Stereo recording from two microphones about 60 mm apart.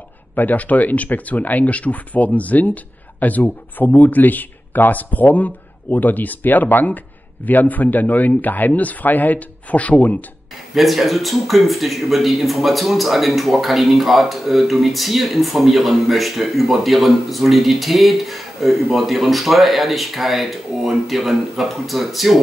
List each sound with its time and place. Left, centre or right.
0.4 s speech: left
10.7 s speech: centre